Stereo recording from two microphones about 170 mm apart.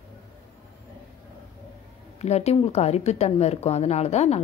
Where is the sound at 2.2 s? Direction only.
40° left (ahead or behind).